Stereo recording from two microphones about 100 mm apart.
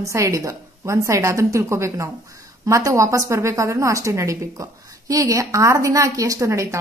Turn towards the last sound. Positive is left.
turn(degrees=-30)  # may be behind; listen again after turning